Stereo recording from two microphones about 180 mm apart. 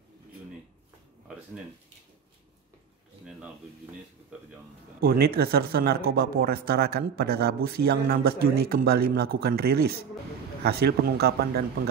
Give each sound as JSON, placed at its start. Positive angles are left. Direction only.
{"t": 5.0, "sound": "speech", "side_deg": -55}